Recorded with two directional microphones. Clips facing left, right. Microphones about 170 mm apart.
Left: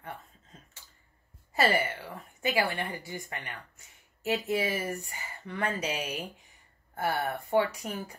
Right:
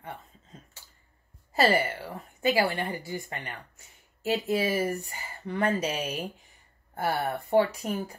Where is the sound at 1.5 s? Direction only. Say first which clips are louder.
Right 3 dB; 35° right (ahead or behind).